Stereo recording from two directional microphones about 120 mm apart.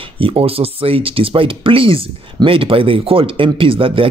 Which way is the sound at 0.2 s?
50° right (ahead or behind).